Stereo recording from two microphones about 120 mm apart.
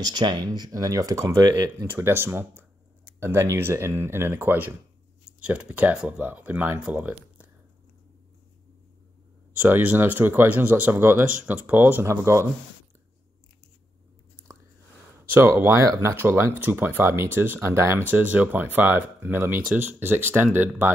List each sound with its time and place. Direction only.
0.0 s speech: 35° right (ahead or behind); by 7.5 s 10° right (ahead or behind)
9.6 s speech: 15° right (ahead or behind)
15.3 s speech: 20° right (ahead or behind)